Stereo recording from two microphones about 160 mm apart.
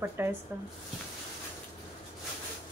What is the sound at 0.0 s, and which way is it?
Speech, 15° right (ahead or behind).